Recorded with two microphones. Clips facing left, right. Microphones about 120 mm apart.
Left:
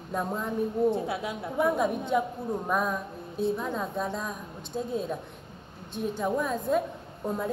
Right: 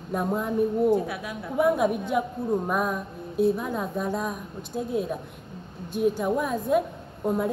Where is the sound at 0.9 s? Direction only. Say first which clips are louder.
Right 4 dB; 25° left (ahead or behind).